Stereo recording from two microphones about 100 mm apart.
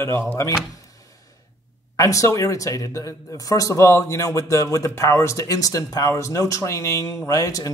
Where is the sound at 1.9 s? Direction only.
30° left (ahead or behind).